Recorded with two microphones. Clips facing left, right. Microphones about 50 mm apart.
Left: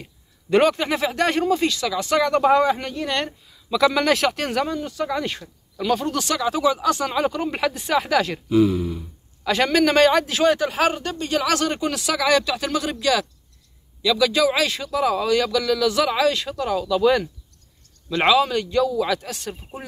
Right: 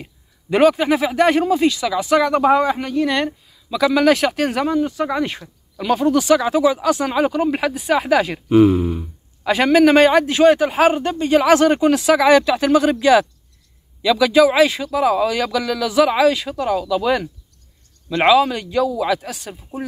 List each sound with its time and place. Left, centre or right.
0.0 s speech: centre
8.5 s speech: right
9.4 s speech: centre
14.0 s speech: centre